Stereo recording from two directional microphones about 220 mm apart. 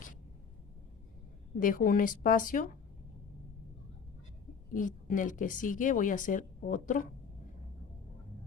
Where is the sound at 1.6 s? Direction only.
40° left (ahead or behind).